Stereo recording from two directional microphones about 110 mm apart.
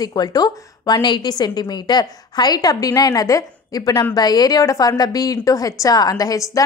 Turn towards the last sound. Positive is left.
turn(degrees=35)  # may be behind; listen again after turning